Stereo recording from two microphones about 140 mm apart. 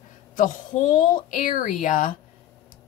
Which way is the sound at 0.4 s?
70° left (ahead or behind).